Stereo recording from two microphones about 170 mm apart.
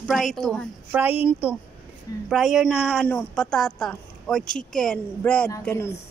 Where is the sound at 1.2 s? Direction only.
10° right (ahead or behind).